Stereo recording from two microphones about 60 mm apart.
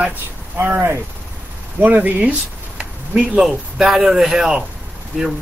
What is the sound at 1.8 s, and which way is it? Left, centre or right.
Speech, right.